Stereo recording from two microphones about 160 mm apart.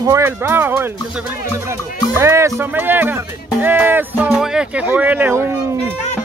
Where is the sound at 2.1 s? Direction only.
15° right (ahead or behind).